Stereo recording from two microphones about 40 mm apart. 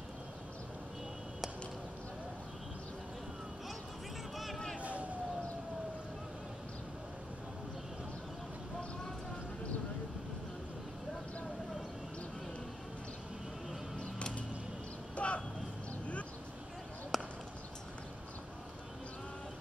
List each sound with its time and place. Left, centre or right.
4.7 s emergency vehicle: right
13.9 s a sound: left
17.1 s chop: centre